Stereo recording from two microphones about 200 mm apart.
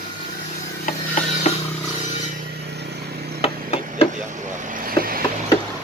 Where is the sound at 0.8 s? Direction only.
40° left (ahead or behind).